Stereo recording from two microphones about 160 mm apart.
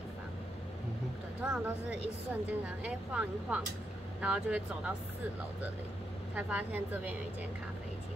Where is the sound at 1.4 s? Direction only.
5° right (ahead or behind).